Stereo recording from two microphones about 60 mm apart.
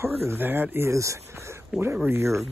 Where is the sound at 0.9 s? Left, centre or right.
Right.